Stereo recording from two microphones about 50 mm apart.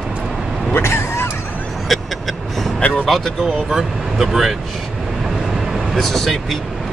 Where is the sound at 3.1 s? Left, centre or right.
Centre.